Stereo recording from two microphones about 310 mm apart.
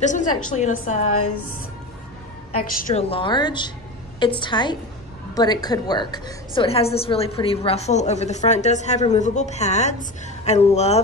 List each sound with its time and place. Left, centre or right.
0.0 s a woman's voice: left
2.6 s a woman's voice: centre